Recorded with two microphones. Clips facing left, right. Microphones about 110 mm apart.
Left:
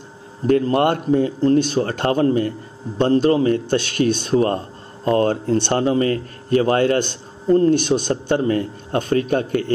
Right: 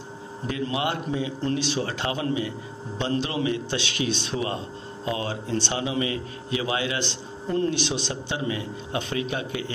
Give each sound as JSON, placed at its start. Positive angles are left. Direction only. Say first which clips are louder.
{"t": 0.5, "sound": "a man's voice", "louder": "left 11 dB", "side_deg": 50}
{"t": 7.4, "sound": "speech", "louder": "left 10 dB", "side_deg": 35}
{"t": 7.7, "sound": "a man's voice", "louder": "left 10 dB", "side_deg": 50}